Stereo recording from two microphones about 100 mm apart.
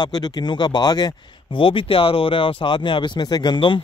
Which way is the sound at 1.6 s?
60° left (ahead or behind).